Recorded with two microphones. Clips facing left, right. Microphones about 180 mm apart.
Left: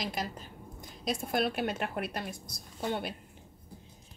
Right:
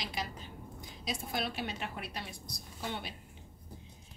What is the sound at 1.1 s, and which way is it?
A woman's voice, 55° left (ahead or behind).